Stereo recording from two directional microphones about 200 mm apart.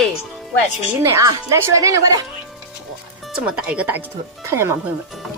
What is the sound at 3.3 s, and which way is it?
A woman's voice, 5° right (ahead or behind).